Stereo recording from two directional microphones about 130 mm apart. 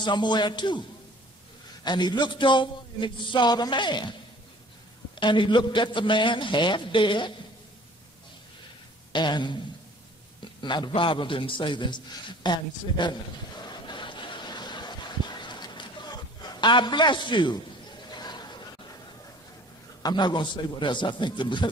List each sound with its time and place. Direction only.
0.0 s a man's voice: 35° left (ahead or behind)
1.9 s a man's voice: 35° left (ahead or behind)
5.1 s a man's voice: 40° left (ahead or behind)
9.1 s a man's voice: 35° left (ahead or behind)
10.4 s a sound: 35° left (ahead or behind)
10.9 s a man's voice: 40° left (ahead or behind)
12.4 s a sound: 35° left (ahead or behind)
20.0 s a man's voice: 35° left (ahead or behind)